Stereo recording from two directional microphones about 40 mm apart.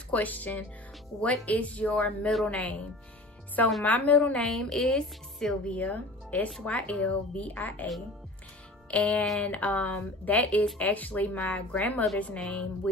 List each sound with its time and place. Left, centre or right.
0.1 s speech: left
1.2 s speech: left
2.0 s speech: left
4.3 s a woman's voice: centre
5.7 s speech: left
8.9 s speech: left
12.4 s speech: left